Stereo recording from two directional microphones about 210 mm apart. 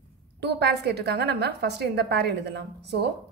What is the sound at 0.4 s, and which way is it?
A woman's voice, 55° right (ahead or behind).